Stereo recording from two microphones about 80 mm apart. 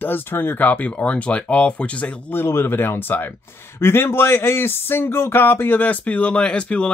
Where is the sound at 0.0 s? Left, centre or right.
Left.